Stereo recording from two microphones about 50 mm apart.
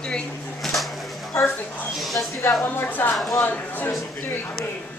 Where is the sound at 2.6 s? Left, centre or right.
Left.